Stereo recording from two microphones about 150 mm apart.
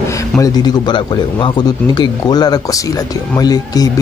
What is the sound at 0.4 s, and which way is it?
A man's voice, 25° left (ahead or behind).